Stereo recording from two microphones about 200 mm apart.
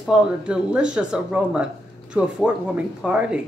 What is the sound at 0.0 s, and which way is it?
A woman's voice, 5° right (ahead or behind).